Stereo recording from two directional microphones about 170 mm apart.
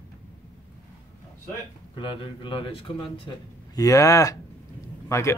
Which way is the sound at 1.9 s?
30° left (ahead or behind).